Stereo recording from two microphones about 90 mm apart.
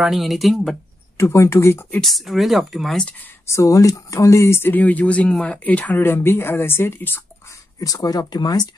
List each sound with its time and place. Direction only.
0.0 s speech: centre (ahead or behind)
1.1 s speech: 35° left (ahead or behind)
2.0 s speech: centre (ahead or behind)
3.4 s speech: 35° left (ahead or behind)
7.8 s speech: 40° left (ahead or behind)